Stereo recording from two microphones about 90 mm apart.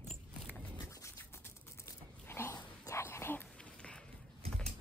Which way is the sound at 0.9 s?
35° left (ahead or behind).